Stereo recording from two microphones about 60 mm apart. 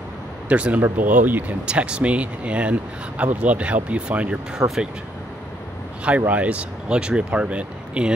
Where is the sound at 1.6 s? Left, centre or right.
Centre.